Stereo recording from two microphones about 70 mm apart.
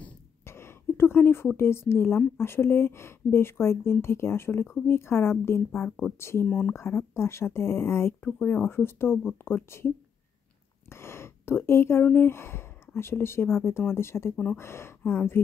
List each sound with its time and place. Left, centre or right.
0.5 s a sound: left
1.6 s a woman's voice: left
10.9 s a sound: left
12.0 s a woman's voice: left
14.3 s speech: left
14.6 s a woman's voice: left